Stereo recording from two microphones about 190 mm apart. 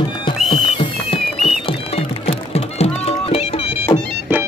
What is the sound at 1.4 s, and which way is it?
Music, 30° left (ahead or behind).